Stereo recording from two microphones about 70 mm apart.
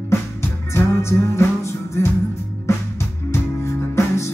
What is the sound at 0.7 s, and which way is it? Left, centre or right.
Music, left.